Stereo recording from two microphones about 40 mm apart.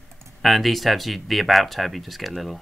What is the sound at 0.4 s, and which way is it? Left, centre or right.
Speech, centre.